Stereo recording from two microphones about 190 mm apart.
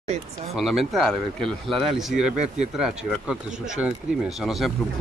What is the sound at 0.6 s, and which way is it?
Speech, centre (ahead or behind).